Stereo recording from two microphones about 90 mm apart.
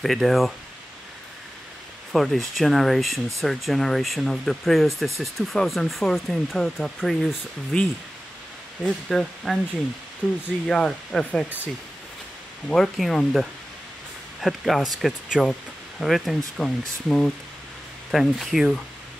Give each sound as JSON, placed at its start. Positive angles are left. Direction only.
{"t": 0.0, "sound": "speech", "side_deg": 0}
{"t": 2.1, "sound": "speech", "side_deg": 0}
{"t": 8.8, "sound": "speech", "side_deg": 5}
{"t": 10.2, "sound": "speech", "side_deg": 15}
{"t": 10.7, "sound": "speech", "side_deg": 5}
{"t": 12.6, "sound": "speech", "side_deg": 5}
{"t": 18.1, "sound": "speech", "side_deg": 0}